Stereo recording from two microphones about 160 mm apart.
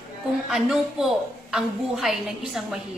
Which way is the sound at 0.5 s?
5° right (ahead or behind).